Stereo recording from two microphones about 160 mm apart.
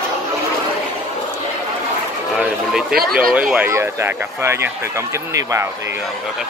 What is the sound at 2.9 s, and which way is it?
Speech, 65° right (ahead or behind).